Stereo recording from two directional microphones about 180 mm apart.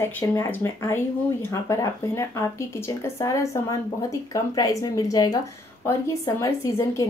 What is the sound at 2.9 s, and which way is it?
Speech, 15° left (ahead or behind).